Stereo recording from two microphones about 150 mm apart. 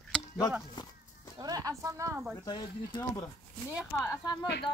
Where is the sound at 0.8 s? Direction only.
30° left (ahead or behind).